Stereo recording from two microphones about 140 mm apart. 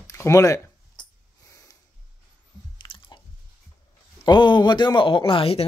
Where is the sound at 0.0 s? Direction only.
20° left (ahead or behind).